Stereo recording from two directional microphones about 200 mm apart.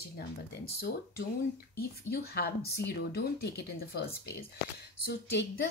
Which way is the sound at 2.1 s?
50° left (ahead or behind).